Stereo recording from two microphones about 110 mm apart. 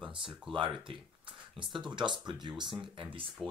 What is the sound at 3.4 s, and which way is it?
Speech, centre (ahead or behind).